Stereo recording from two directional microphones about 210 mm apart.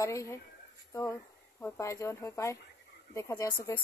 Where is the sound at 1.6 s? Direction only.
15° left (ahead or behind).